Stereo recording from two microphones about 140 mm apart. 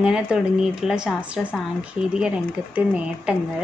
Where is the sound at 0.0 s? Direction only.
5° right (ahead or behind).